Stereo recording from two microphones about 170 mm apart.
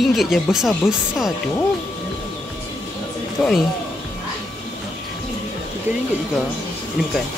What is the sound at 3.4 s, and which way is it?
Speech, 5° left (ahead or behind).